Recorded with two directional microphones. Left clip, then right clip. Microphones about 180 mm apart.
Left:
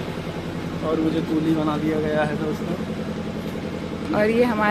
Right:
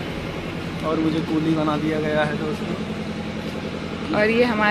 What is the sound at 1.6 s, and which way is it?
Speech, 20° right (ahead or behind).